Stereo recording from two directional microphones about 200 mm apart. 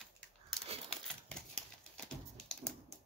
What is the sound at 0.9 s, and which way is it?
Typewriter, 5° left (ahead or behind).